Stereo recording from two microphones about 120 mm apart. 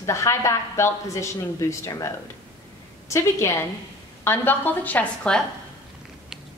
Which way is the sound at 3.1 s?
25° left (ahead or behind).